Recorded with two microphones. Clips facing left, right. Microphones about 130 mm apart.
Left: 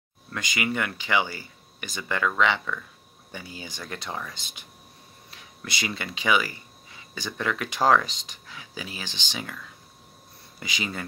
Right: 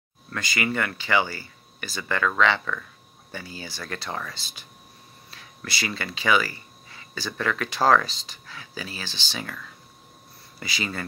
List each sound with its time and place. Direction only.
0.3 s speech: 15° left (ahead or behind)